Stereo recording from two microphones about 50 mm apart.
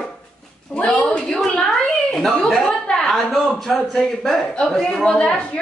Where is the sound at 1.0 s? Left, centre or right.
Centre.